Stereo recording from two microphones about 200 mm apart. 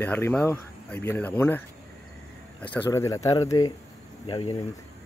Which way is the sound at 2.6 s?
10° left (ahead or behind).